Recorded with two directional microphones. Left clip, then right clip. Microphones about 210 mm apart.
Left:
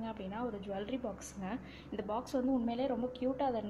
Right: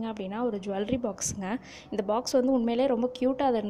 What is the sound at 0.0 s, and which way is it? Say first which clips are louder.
A woman's voice: right 9 dB; 40° right (ahead or behind).